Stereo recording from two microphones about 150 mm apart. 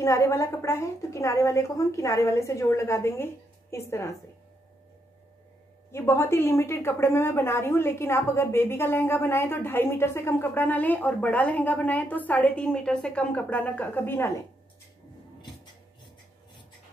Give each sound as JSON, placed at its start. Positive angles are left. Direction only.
{"t": 0.0, "sound": "a woman's voice", "side_deg": 20}
{"t": 5.9, "sound": "a woman's voice", "side_deg": 15}